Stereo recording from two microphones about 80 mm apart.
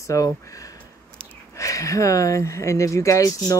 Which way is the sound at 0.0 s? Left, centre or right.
Left.